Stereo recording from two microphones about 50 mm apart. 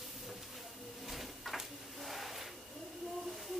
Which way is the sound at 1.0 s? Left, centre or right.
Centre.